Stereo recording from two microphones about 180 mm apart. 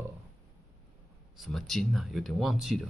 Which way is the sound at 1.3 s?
Centre (ahead or behind).